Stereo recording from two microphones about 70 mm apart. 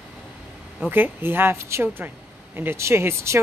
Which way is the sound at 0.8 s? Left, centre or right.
Right.